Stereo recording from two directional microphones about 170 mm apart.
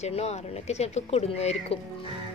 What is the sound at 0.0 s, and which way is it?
Speech, 40° left (ahead or behind).